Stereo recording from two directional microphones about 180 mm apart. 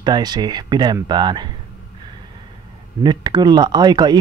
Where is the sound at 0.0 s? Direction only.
25° right (ahead or behind).